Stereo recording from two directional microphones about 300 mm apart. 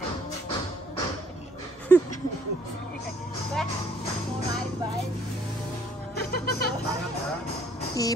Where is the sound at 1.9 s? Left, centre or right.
Centre.